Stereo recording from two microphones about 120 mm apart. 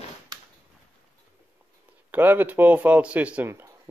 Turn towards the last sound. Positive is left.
turn(degrees=-10)  # may be behind; listen again after turning